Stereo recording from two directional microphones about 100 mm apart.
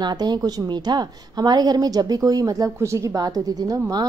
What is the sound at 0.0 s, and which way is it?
A woman's voice, 45° right (ahead or behind).